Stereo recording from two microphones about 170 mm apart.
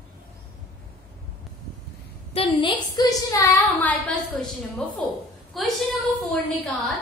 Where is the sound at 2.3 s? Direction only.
30° left (ahead or behind); by 5.7 s centre (ahead or behind).